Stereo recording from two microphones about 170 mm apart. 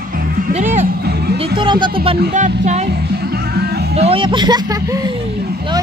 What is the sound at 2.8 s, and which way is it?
Music, 70° right (ahead or behind).